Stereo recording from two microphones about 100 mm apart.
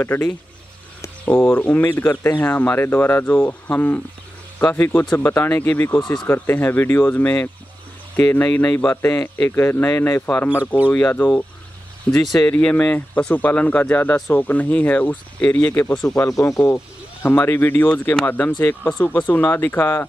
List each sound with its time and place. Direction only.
0.0 s speech: 20° left (ahead or behind)
5.9 s speech: 50° left (ahead or behind)
6.2 s speech: 20° left (ahead or behind)
12.1 s speech: centre (ahead or behind)
12.4 s speech: 15° left (ahead or behind)
16.2 s speech: 30° left (ahead or behind)